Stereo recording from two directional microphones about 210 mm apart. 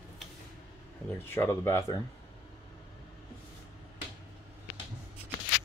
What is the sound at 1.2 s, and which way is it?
Speech, 10° left (ahead or behind).